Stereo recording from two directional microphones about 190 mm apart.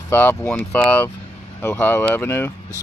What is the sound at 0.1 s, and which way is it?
Speech, 10° left (ahead or behind).